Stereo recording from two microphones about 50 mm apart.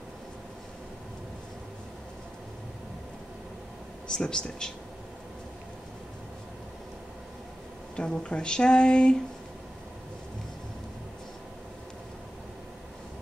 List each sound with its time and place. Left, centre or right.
4.1 s speech: centre
7.9 s speech: centre